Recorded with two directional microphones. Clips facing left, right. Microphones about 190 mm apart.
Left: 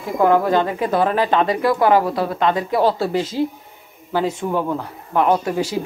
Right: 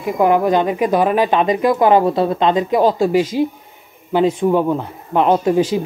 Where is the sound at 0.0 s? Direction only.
15° right (ahead or behind).